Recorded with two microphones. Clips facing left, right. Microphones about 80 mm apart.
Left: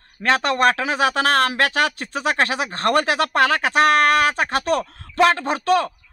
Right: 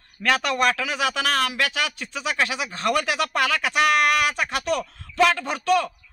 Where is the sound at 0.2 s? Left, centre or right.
Left.